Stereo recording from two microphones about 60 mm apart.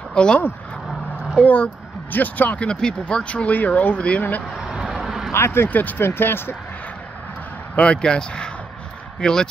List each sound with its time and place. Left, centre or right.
0.1 s speech: centre
1.4 s speech: left
2.7 s speech: centre
4.6 s vehicle: centre
5.3 s speech: left
5.7 s speech: left
7.7 s speech: centre